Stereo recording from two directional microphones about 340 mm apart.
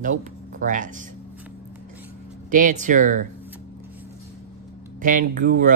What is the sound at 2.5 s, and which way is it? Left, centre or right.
Speech, right.